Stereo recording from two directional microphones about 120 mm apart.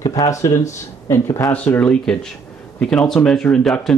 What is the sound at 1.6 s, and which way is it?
Speech, 10° left (ahead or behind).